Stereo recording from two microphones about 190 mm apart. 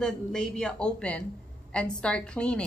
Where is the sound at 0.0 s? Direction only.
5° left (ahead or behind).